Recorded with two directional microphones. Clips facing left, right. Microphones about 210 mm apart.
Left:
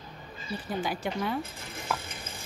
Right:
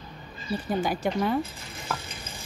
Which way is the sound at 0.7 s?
45° right (ahead or behind).